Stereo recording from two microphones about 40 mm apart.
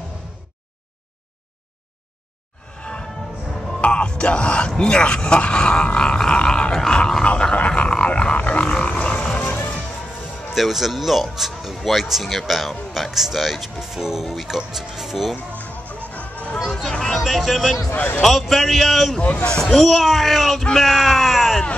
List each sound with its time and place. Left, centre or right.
2.8 s music: left
3.8 s speech: left
7.0 s a sound: centre
10.5 s speech: centre
16.1 s music: left
16.9 s speech: centre
19.3 s speech: centre